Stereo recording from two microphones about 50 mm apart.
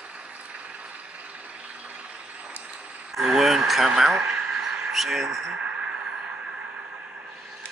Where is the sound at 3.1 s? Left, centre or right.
Centre.